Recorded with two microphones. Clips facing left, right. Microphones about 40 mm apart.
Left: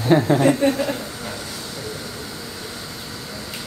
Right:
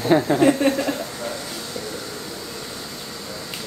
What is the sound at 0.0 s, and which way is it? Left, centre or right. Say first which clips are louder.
Speech: even; centre.